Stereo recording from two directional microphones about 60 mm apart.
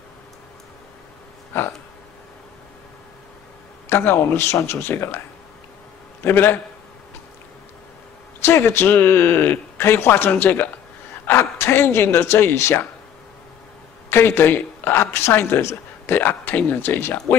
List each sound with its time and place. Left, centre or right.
3.9 s speech: left
6.2 s speech: left
8.5 s speech: left
10.3 s speech: left
11.2 s speech: left
14.1 s speech: left